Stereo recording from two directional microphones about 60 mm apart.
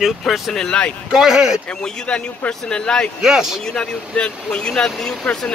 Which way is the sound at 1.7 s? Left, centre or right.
Centre.